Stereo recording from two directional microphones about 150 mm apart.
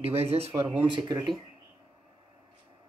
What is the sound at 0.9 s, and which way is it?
Speech, 30° right (ahead or behind).